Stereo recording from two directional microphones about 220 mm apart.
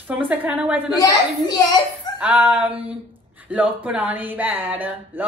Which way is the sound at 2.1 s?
10° right (ahead or behind).